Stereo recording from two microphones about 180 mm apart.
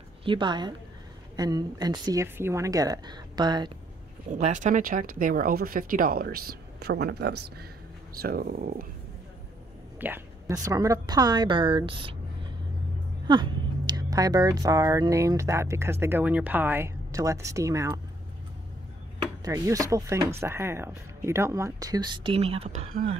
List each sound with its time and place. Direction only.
0.2 s speech: 25° right (ahead or behind)
4.3 s speech: 45° right (ahead or behind); by 7.6 s 65° right (ahead or behind)
8.2 s speech: 55° right (ahead or behind)
9.9 s a sound: 10° right (ahead or behind)
10.5 s speech: 20° right (ahead or behind)
13.3 s speech: 25° right (ahead or behind)
19.4 s speech: 20° right (ahead or behind); by 22.8 s 35° right (ahead or behind)